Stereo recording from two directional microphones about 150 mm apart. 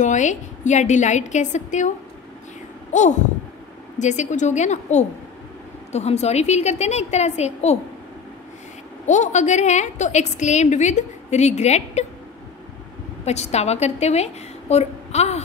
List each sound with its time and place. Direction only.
0.0 s a woman's voice: 55° left (ahead or behind)
2.9 s a sound: 55° left (ahead or behind)
4.0 s a woman's voice: 50° left (ahead or behind)
9.0 s a woman's voice: 50° left (ahead or behind)
13.2 s a woman's voice: 45° left (ahead or behind)